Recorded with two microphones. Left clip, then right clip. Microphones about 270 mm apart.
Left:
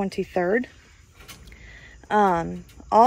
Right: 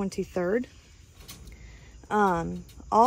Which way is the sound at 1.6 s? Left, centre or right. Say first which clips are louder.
Left 9 dB; centre.